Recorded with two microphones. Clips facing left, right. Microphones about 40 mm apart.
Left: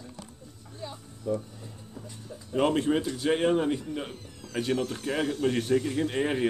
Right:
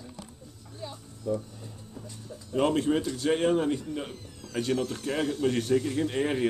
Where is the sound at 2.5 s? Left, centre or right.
Centre.